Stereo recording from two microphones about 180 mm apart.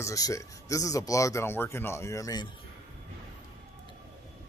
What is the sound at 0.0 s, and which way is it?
Speech, 20° left (ahead or behind).